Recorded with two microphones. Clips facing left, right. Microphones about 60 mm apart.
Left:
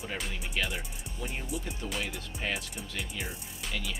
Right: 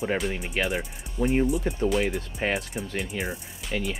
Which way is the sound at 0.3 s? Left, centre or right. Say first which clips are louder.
Right 7 dB; right.